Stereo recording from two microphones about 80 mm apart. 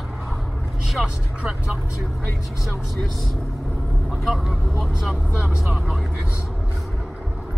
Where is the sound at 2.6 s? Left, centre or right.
Left.